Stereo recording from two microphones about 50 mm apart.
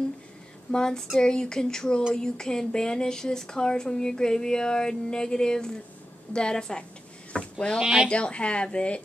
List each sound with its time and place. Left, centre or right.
0.7 s speech: centre
7.3 s sheep: centre
7.8 s speech: centre
8.1 s speech: left